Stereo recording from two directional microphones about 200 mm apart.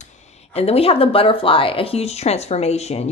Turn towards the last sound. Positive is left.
turn(degrees=30)  # may be behind; listen again after turning